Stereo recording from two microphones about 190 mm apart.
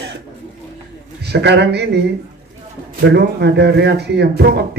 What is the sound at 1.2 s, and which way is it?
Speech, 60° right (ahead or behind).